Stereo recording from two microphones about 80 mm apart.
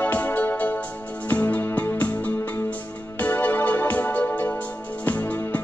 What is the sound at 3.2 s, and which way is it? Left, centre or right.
Music, left.